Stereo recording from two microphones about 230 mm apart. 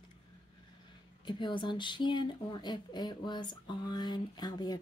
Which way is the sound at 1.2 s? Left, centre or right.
Centre.